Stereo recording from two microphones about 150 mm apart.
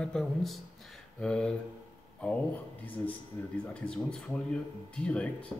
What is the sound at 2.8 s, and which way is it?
Speech, 10° left (ahead or behind).